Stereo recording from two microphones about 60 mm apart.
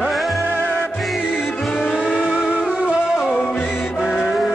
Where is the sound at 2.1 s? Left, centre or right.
Centre.